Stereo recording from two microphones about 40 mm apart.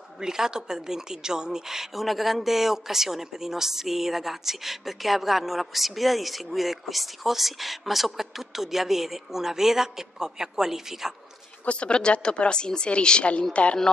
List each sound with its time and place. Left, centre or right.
0.2 s a woman's voice: centre
11.6 s speech: left